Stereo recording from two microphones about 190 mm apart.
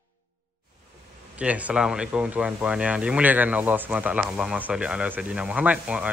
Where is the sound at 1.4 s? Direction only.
5° right (ahead or behind).